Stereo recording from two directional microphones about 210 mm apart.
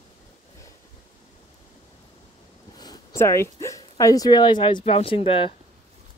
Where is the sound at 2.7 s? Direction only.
15° left (ahead or behind).